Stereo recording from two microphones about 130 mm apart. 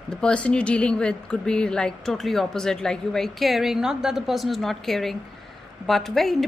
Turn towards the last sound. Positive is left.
turn(degrees=0)  # may be behind; listen again after turning